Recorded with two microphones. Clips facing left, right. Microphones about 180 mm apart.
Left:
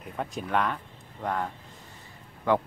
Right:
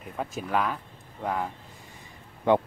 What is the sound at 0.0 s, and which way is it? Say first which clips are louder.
Speech: even; 5° right (ahead or behind).